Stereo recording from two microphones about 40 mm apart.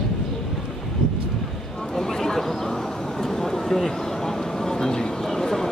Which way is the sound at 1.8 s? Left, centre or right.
Centre.